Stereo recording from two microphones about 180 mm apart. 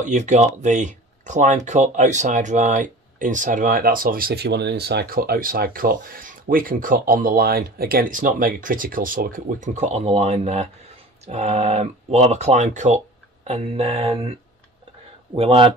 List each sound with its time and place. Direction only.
0.0 s speech: 40° right (ahead or behind)
15.3 s speech: 30° right (ahead or behind)